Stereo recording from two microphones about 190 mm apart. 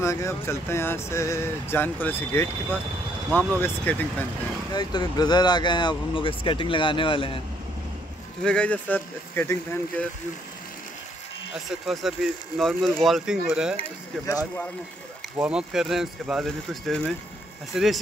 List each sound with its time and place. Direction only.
0.0 s speech: 15° left (ahead or behind)
4.7 s speech: 20° left (ahead or behind)
8.5 s speech: 5° left (ahead or behind)
11.7 s speech: centre (ahead or behind)
15.3 s speech: 5° right (ahead or behind)